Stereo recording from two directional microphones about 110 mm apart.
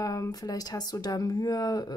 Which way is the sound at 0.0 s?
30° left (ahead or behind).